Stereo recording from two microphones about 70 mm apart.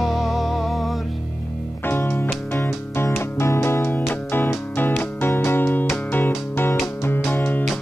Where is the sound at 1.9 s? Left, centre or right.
Left.